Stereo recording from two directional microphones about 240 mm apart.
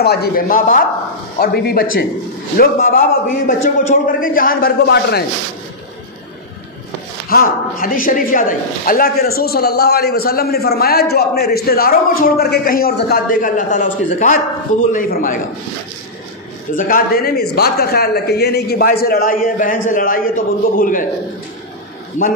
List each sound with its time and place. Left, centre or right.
0.0 s a man's voice: left
7.2 s a man's voice: left
16.7 s a man's voice: left